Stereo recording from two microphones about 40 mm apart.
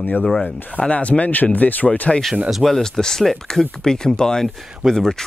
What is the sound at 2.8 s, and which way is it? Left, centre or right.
Speech, centre.